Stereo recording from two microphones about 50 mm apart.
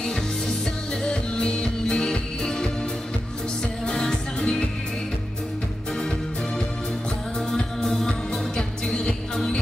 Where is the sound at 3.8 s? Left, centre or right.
Centre.